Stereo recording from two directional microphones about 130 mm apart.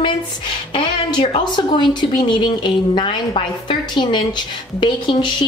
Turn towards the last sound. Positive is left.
turn(degrees=35)  # may be behind; listen again after turning